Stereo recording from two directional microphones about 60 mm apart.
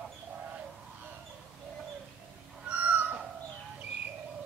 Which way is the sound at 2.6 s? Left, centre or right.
Right.